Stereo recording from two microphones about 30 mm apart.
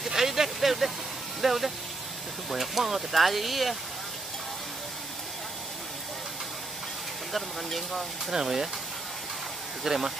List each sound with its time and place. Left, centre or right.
0.0 s vehicle: centre
2.5 s speech: centre
7.3 s speech: centre
8.3 s speech: centre
9.9 s speech: centre